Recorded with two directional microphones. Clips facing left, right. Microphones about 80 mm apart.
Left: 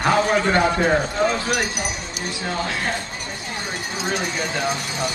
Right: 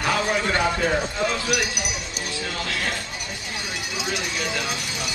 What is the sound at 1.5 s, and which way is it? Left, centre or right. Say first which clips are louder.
Speech: left 2 dB; left.